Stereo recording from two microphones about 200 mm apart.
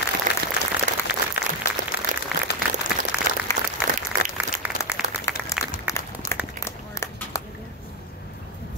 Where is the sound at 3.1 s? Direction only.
5° right (ahead or behind).